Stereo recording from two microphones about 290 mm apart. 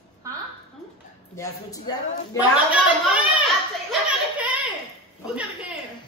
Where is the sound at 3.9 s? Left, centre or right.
Centre.